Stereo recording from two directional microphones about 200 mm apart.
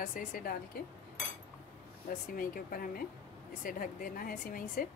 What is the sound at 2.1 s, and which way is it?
A woman's voice, 45° left (ahead or behind).